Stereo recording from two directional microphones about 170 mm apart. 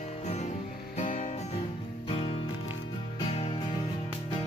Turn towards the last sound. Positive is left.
turn(degrees=35)  # may be behind; listen again after turning